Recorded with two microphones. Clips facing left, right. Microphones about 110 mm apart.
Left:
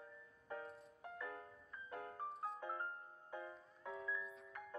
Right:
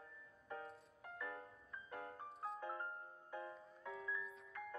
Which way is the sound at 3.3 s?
20° left (ahead or behind).